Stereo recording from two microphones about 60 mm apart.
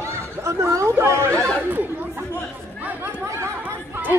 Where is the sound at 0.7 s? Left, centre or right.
Right.